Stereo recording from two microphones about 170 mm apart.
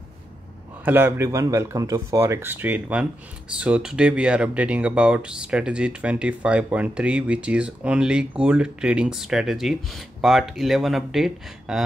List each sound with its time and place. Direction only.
0.8 s speech: 10° right (ahead or behind)